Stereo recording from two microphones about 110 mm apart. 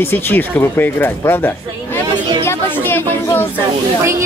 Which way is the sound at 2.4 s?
20° left (ahead or behind).